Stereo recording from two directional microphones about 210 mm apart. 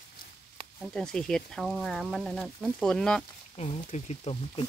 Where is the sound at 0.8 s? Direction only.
5° left (ahead or behind).